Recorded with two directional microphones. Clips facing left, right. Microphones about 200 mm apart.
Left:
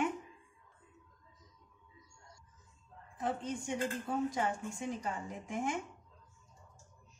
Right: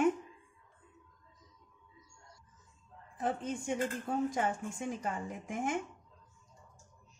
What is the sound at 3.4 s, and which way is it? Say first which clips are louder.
Speech: right 2 dB; 50° right (ahead or behind).